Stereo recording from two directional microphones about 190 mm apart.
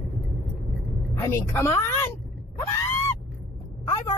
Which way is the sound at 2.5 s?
15° left (ahead or behind).